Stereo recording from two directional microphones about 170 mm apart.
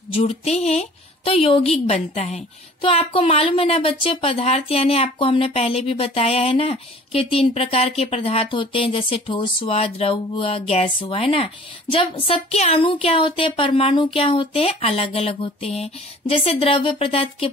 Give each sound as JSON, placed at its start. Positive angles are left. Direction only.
{"t": 0.1, "sound": "speech", "side_deg": 40}